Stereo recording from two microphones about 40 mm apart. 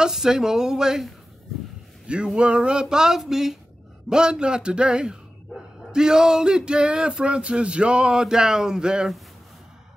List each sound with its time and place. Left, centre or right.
0.1 s speech: centre
2.3 s speech: right; by 3.5 s centre
4.1 s speech: right